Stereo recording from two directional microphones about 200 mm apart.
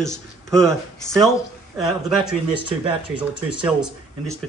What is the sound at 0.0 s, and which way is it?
Speech, 5° left (ahead or behind).